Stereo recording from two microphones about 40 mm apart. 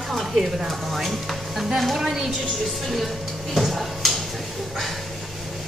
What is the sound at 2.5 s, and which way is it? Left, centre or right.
Music, centre.